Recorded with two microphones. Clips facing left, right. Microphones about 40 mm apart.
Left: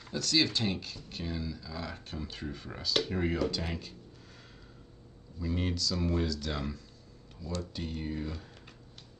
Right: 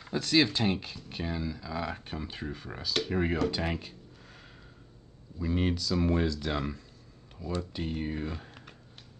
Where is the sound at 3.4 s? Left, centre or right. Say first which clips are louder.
Right 3 dB; right.